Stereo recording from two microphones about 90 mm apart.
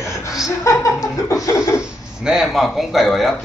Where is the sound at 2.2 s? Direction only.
5° right (ahead or behind).